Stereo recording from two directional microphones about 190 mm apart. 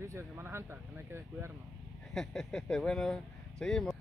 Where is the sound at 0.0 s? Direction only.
15° right (ahead or behind).